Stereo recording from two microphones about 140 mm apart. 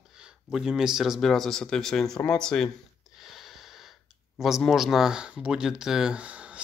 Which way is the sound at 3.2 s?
Centre (ahead or behind).